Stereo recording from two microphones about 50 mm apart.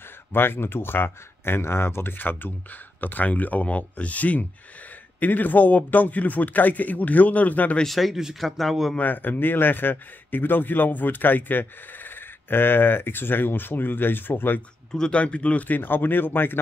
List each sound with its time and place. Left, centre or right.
0.3 s speech: left
7.8 s speech: centre
9.0 s speech: left
14.9 s speech: centre
15.1 s speech: left